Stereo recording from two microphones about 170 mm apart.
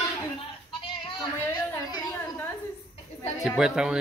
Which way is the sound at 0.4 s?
30° left (ahead or behind).